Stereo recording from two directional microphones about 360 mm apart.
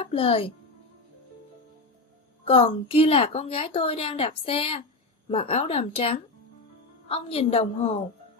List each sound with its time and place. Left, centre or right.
0.0 s speech: centre
2.4 s a woman's voice: centre